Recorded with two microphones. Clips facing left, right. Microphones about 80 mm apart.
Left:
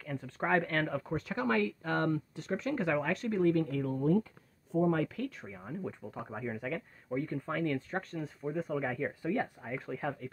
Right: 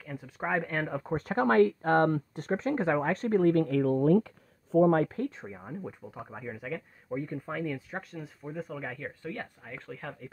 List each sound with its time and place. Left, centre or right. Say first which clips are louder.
0.0 s speech: even; centre
1.1 s speech: right 9 dB; right
4.8 s speech: right 6 dB; right
5.6 s speech: left 2 dB; centre